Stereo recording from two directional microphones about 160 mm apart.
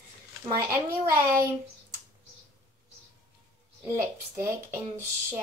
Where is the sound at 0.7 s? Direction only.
15° right (ahead or behind).